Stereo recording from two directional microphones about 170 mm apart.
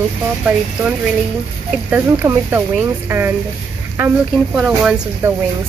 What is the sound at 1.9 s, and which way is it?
Speech, 15° right (ahead or behind).